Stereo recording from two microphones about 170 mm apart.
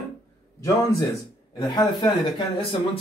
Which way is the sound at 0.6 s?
20° left (ahead or behind).